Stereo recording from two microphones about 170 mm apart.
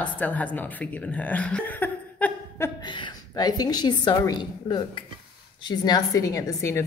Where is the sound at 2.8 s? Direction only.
25° left (ahead or behind).